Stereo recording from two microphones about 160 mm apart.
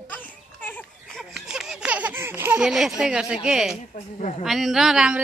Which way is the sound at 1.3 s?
5° right (ahead or behind).